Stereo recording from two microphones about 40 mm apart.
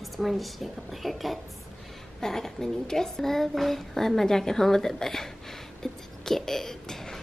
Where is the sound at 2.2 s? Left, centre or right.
Centre.